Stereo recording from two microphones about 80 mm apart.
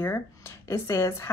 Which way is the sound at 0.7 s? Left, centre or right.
Left.